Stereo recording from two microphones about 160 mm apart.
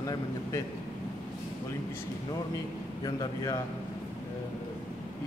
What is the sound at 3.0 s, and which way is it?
Speech, 20° left (ahead or behind).